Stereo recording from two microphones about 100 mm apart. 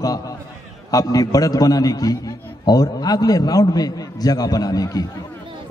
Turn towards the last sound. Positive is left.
turn(degrees=35)  # may be behind; listen again after turning